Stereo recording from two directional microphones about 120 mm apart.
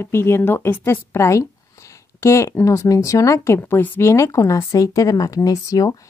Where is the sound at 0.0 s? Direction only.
20° left (ahead or behind).